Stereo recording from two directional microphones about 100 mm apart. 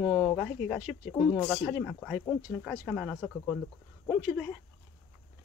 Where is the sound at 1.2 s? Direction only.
10° left (ahead or behind).